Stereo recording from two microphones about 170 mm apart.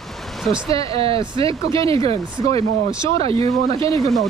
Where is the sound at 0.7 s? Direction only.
35° right (ahead or behind).